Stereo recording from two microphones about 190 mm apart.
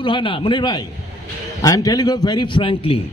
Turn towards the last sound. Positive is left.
turn(degrees=30)  # may be behind; listen again after turning